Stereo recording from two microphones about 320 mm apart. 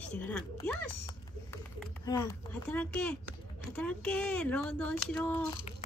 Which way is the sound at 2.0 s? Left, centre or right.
Centre.